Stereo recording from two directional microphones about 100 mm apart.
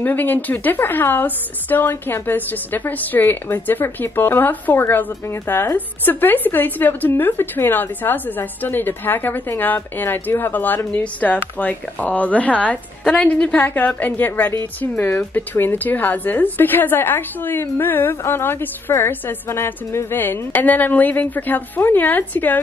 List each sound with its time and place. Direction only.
0.0 s a woman's voice: 20° left (ahead or behind)